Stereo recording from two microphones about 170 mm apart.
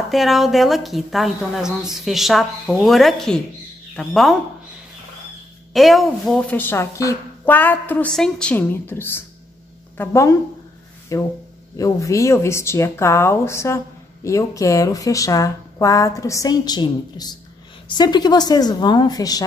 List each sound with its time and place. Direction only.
0.1 s a woman's voice: centre (ahead or behind)
5.7 s speech: centre (ahead or behind); by 19.4 s 20° left (ahead or behind)